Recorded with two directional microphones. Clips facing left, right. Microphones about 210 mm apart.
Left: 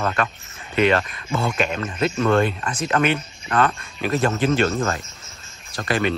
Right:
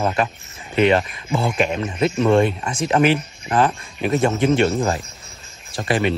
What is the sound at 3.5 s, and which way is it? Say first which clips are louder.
A man's voice: right 2 dB; 25° right (ahead or behind).